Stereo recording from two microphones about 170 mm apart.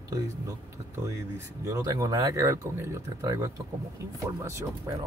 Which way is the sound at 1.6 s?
20° right (ahead or behind).